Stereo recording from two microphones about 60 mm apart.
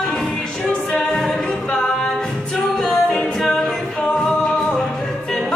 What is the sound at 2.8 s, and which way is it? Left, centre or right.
Music, centre.